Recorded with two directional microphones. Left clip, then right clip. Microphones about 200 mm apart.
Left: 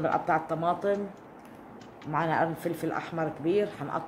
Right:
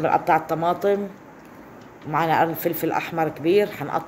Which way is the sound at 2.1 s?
20° right (ahead or behind).